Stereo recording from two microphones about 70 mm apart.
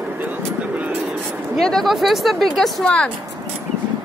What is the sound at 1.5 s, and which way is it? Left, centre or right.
Speech, centre.